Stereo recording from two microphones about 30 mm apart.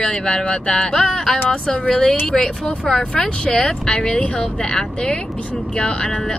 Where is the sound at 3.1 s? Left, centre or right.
Centre.